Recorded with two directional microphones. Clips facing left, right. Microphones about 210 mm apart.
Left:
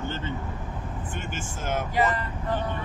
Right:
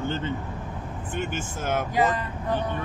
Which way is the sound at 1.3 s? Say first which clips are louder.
Right 3 dB; 55° right (ahead or behind).